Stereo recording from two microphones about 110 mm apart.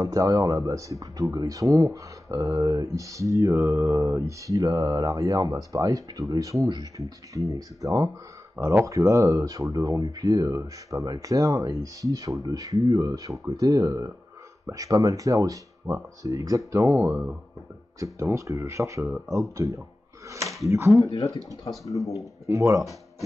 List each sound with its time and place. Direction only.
0.0 s speech: 30° right (ahead or behind)
18.3 s speech: 30° right (ahead or behind)